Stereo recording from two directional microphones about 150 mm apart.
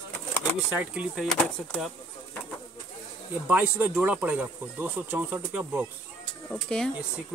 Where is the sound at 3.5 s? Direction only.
10° right (ahead or behind).